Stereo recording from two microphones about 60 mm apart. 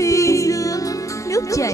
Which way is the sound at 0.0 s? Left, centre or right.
Left.